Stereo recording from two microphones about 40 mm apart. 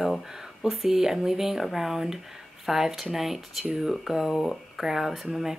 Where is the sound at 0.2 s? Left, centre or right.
Centre.